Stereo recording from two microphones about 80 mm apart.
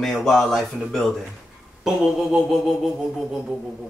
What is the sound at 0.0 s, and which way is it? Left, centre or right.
Speech, centre.